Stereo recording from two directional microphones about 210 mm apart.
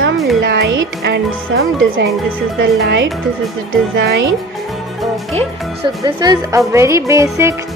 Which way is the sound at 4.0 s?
50° right (ahead or behind).